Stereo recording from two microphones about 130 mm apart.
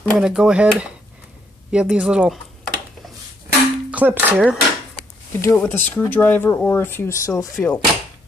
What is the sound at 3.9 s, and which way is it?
Speech, 10° right (ahead or behind).